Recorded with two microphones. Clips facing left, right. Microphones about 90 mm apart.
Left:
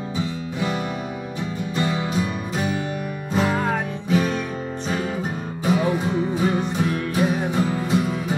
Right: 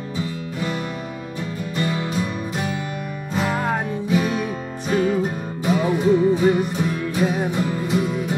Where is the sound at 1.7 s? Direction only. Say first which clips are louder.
Even; 20° left (ahead or behind).